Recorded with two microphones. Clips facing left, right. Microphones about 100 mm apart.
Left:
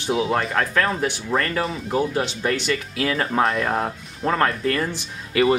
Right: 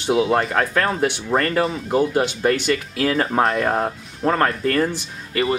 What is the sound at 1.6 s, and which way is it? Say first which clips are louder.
Speech: right 4 dB; centre (ahead or behind).